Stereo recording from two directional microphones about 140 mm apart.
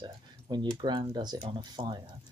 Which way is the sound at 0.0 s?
30° right (ahead or behind).